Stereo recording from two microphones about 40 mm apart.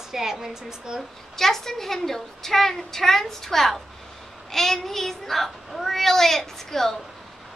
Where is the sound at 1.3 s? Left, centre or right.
Centre.